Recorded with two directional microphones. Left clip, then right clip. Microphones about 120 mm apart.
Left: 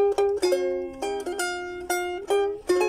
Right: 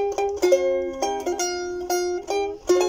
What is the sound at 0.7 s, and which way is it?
Music, 35° right (ahead or behind).